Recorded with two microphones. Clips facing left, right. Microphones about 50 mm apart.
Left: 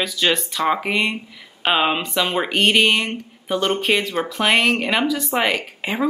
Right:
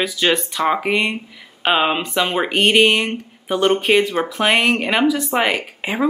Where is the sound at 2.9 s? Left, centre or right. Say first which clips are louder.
Right 2 dB; right.